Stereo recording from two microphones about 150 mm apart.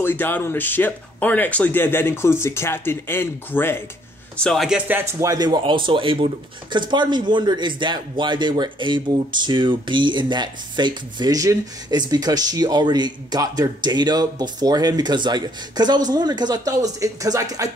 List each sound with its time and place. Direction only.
0.0 s speech: 15° left (ahead or behind)
4.4 s speech: centre (ahead or behind); by 17.6 s 25° right (ahead or behind)